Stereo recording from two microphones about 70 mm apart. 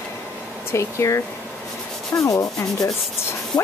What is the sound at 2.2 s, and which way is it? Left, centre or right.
Speech, left.